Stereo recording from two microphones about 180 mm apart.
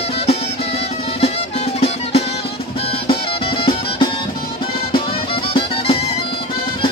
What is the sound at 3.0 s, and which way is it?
Music, 30° left (ahead or behind).